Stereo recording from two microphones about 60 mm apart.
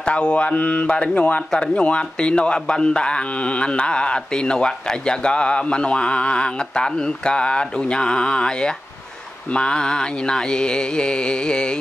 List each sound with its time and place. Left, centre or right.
0.0 s a man's voice: centre